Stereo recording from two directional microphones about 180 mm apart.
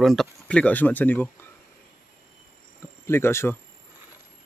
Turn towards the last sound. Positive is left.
turn(degrees=15)  # may be behind; listen again after turning